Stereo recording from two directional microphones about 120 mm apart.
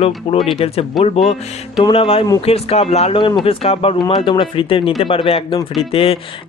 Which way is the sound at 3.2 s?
40° left (ahead or behind).